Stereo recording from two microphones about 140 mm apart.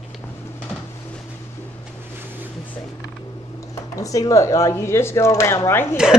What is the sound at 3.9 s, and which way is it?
Speech, 25° left (ahead or behind).